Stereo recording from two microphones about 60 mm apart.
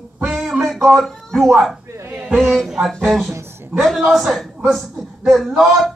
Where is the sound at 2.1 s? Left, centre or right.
Centre.